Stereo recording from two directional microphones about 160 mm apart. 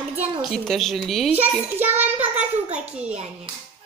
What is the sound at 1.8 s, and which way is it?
A child's voice, 10° right (ahead or behind).